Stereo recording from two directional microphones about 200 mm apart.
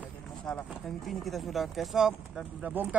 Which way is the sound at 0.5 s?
Centre (ahead or behind).